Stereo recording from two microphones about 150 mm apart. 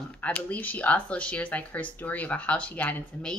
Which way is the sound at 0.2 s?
10° left (ahead or behind).